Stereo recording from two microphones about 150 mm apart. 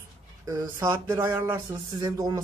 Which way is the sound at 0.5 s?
20° right (ahead or behind).